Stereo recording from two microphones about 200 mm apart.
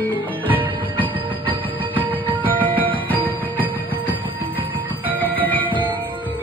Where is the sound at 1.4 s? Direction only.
25° right (ahead or behind).